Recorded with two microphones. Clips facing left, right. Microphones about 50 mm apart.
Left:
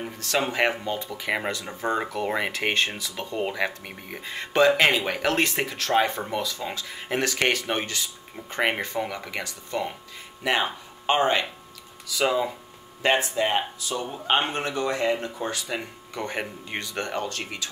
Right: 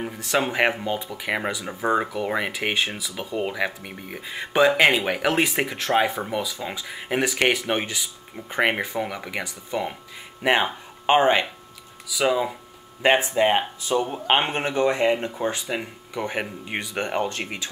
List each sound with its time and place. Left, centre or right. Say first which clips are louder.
0.0 s speech: right 2 dB; centre
6.0 s speech: right 2 dB; centre; by 11.4 s right
12.1 s speech: right 2 dB; centre
13.0 s speech: right 4 dB; right
15.6 s speech: right 3 dB; centre